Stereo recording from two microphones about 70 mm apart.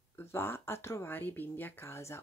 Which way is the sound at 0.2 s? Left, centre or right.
Left.